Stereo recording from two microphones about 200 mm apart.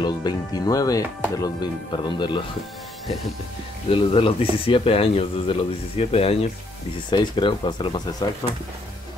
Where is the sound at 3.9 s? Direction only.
25° left (ahead or behind).